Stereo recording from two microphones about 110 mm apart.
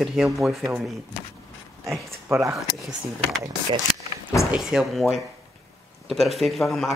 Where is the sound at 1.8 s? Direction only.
25° right (ahead or behind).